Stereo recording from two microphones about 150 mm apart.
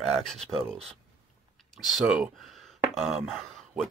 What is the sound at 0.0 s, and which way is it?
Speech, 5° left (ahead or behind).